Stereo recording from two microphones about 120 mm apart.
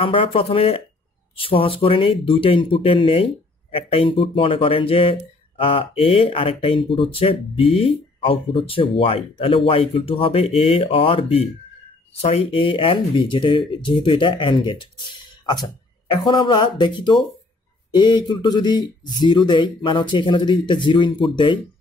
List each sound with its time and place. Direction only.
0.0 s speech: 50° left (ahead or behind)